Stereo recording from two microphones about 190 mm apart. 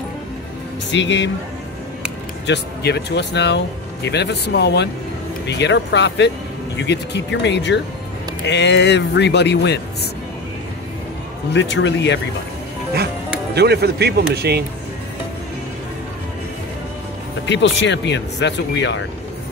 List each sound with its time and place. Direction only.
0.9 s speech: 70° left (ahead or behind)
2.4 s speech: 65° left (ahead or behind)
11.5 s speech: 70° left (ahead or behind)
13.6 s speech: 60° right (ahead or behind)
17.5 s speech: 70° left (ahead or behind)